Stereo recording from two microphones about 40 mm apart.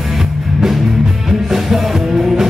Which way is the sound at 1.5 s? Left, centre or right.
Centre.